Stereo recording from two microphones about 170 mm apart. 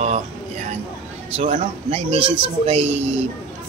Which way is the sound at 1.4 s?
35° right (ahead or behind).